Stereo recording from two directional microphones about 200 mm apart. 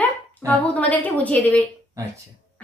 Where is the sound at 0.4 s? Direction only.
15° right (ahead or behind).